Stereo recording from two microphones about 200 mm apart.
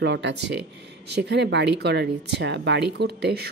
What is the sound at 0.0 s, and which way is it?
A woman's voice, 60° right (ahead or behind).